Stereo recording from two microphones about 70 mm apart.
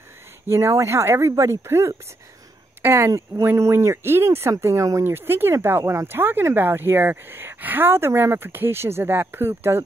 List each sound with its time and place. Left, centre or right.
0.5 s speech: right